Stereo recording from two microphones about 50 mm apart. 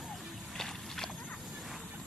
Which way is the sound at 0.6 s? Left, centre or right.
Centre.